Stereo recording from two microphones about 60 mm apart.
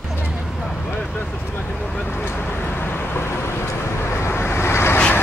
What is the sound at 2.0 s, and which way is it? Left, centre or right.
Vehicle, left.